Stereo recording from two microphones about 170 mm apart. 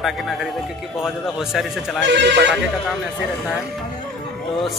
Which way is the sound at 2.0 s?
90° right.